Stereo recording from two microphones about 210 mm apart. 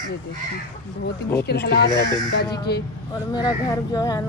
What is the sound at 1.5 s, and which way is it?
Speech, 50° left (ahead or behind).